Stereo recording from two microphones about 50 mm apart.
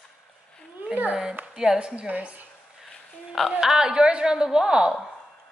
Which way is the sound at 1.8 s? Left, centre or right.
Right.